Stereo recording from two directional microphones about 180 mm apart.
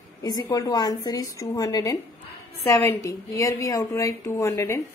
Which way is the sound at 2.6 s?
15° left (ahead or behind).